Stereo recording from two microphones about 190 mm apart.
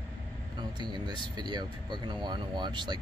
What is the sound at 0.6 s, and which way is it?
Speech, 25° right (ahead or behind).